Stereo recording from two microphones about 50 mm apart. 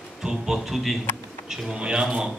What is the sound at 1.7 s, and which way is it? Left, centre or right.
Speech, centre.